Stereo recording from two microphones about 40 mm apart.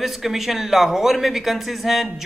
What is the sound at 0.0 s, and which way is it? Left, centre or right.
A woman's voice, centre.